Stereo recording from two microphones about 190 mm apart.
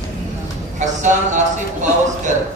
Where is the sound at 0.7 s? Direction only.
40° right (ahead or behind).